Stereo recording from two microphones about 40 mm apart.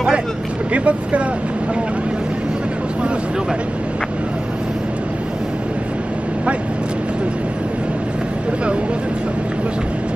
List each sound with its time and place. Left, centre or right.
0.7 s speech: right